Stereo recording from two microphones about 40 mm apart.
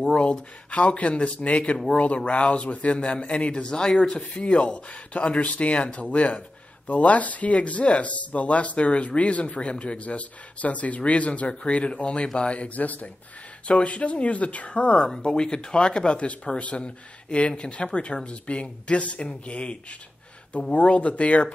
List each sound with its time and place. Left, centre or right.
0.1 s speech: left
3.8 s speech: centre
4.4 s speech: left
13.7 s speech: left